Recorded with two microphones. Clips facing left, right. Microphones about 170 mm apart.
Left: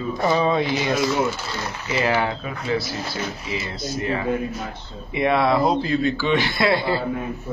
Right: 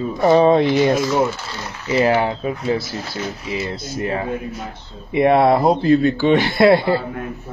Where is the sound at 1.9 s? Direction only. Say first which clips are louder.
Right 5 dB; 35° right (ahead or behind).